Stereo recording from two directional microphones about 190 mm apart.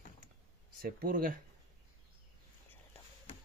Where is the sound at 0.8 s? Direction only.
50° right (ahead or behind).